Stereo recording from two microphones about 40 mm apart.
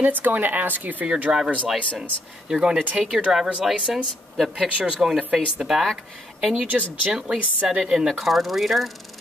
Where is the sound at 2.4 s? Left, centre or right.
Centre.